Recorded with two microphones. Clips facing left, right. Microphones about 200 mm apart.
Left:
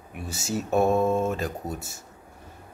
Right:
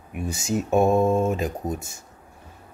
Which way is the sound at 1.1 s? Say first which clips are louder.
Right 3 dB; centre (ahead or behind).